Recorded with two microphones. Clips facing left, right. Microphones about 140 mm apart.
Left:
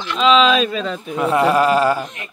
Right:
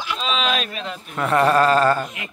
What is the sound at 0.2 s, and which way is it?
Speech, 90° left.